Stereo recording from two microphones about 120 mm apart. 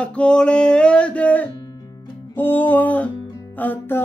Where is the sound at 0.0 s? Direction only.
10° left (ahead or behind).